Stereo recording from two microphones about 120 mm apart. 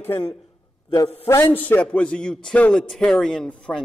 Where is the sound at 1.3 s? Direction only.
20° left (ahead or behind).